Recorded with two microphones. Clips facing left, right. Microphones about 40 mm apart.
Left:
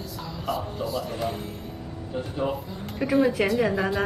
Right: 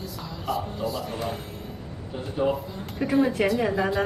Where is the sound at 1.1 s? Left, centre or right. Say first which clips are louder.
Left 1 dB; right.